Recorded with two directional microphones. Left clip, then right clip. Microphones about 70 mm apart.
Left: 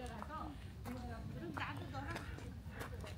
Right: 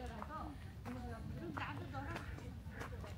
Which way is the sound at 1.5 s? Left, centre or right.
Left.